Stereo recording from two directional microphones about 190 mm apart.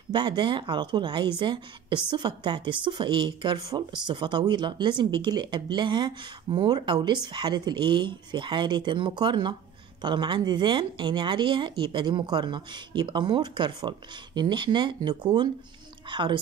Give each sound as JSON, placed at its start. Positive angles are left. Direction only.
{"t": 0.1, "sound": "a woman's voice", "side_deg": -25}